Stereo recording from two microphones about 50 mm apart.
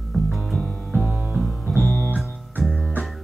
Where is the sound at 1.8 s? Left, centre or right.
Left.